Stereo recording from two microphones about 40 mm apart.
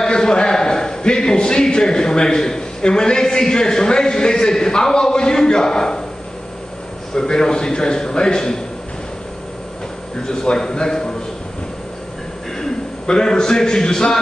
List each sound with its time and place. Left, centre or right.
0.0 s a sound: centre
7.2 s a man's voice: centre
10.2 s a man's voice: centre
12.5 s a man's voice: centre